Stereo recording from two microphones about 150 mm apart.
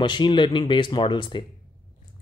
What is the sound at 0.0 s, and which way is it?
A man's voice, 30° left (ahead or behind).